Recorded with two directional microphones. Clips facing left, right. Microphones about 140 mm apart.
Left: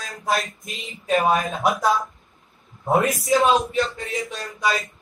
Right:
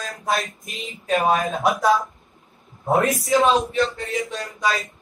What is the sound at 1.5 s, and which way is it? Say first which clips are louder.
Speech: right 2 dB; centre (ahead or behind).